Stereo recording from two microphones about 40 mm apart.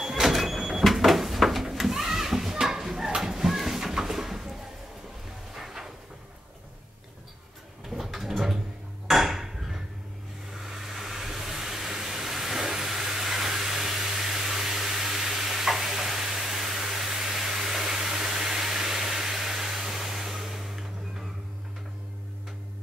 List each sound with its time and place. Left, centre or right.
0.0 s sliding door: centre
3.2 s a sound: centre
7.9 s a sound: centre
9.0 s hammer: centre
10.6 s vehicle: centre
14.2 s stir: centre